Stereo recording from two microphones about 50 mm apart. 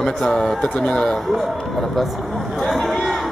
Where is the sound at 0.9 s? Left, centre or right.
Centre.